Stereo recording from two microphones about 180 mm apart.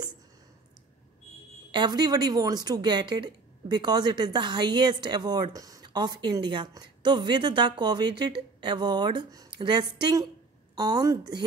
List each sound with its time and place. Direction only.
1.7 s a woman's voice: 25° right (ahead or behind)